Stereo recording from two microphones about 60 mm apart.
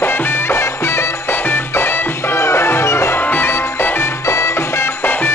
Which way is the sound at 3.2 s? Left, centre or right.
Left.